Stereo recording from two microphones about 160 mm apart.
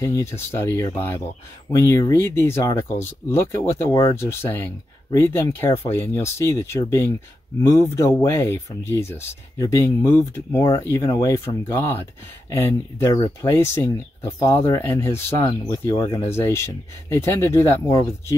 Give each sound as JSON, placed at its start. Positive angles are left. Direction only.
{"t": 0.0, "sound": "speech", "side_deg": 15}